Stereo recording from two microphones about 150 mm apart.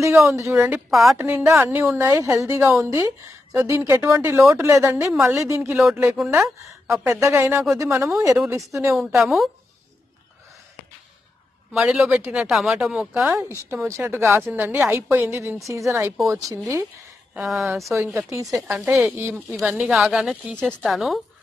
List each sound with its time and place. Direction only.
0.0 s a woman's voice: 20° right (ahead or behind)
0.7 s speech: 5° right (ahead or behind)
1.1 s a woman's voice: 15° right (ahead or behind)
6.1 s speech: 5° right (ahead or behind)
6.4 s a woman's voice: 20° right (ahead or behind)
9.2 s speech: centre (ahead or behind)
11.7 s speech: 5° right (ahead or behind)
13.3 s a woman's voice: 20° right (ahead or behind)
17.3 s speech: 5° right (ahead or behind)
17.9 s a woman's voice: 20° right (ahead or behind); by 21.2 s centre (ahead or behind)